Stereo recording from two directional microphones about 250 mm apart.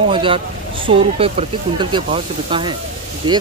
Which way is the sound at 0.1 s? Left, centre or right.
Centre.